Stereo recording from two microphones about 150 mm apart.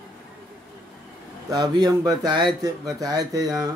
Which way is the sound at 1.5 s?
25° right (ahead or behind).